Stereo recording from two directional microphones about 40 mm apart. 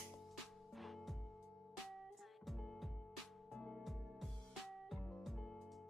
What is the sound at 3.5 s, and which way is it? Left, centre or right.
Music, centre.